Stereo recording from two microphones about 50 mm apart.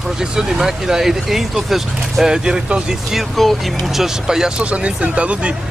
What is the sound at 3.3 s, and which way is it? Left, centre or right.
Speech, centre.